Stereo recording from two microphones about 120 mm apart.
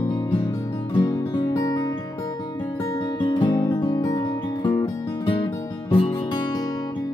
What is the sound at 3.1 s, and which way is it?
Music, 40° left (ahead or behind).